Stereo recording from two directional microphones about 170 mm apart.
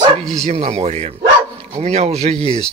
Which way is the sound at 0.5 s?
40° right (ahead or behind).